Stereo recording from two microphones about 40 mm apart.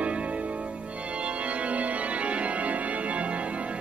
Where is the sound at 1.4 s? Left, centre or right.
Right.